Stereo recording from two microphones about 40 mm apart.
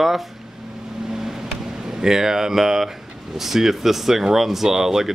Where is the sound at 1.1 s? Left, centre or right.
Centre.